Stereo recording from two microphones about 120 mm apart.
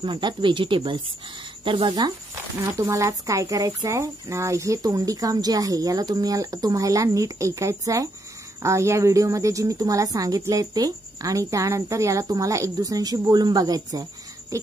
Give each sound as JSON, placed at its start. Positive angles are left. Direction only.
{"t": 0.0, "sound": "speech", "side_deg": -40}
{"t": 2.3, "sound": "speech", "side_deg": -25}